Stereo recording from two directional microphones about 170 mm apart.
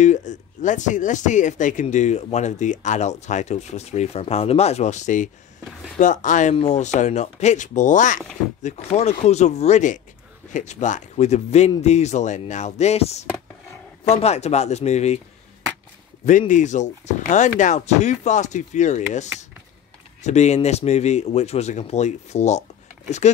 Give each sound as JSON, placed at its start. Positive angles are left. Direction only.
{"t": 0.0, "sound": "speech", "side_deg": 45}
{"t": 16.3, "sound": "speech", "side_deg": 45}
{"t": 20.2, "sound": "speech", "side_deg": 40}